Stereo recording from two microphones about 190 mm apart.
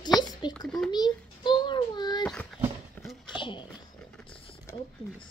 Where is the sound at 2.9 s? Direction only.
Centre (ahead or behind).